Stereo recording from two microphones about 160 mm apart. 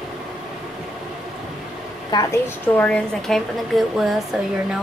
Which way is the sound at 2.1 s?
25° left (ahead or behind).